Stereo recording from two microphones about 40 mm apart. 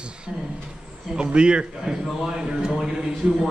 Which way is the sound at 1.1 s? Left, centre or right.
Right.